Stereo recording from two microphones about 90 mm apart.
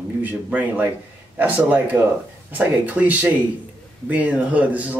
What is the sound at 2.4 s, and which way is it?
Speech, 20° right (ahead or behind).